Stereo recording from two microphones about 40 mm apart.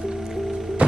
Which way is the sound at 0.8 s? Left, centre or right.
Right.